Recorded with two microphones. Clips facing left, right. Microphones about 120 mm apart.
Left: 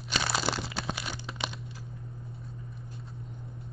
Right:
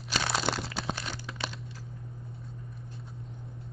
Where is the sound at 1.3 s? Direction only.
20° left (ahead or behind).